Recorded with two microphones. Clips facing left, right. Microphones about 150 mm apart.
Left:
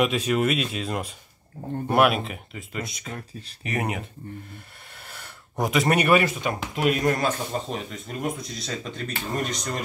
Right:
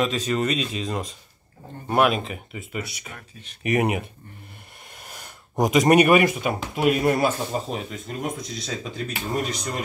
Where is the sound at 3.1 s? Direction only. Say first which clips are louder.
Left 6 dB; 35° left (ahead or behind).